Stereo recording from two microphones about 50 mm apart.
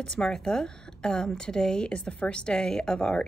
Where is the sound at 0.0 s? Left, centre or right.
Centre.